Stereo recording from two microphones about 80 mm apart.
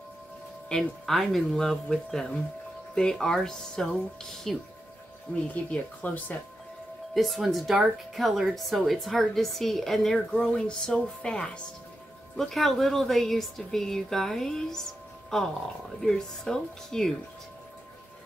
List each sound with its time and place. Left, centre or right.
0.7 s speech: centre
5.5 s speech: centre
7.2 s speech: centre